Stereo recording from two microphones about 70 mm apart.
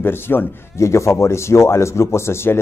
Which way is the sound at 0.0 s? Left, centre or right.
Left.